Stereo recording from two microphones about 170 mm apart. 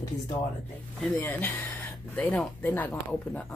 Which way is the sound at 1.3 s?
15° left (ahead or behind).